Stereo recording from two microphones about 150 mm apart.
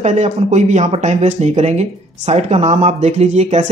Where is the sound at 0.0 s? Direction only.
50° right (ahead or behind).